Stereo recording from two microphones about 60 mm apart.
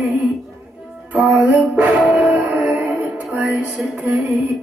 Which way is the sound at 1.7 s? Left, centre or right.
Right.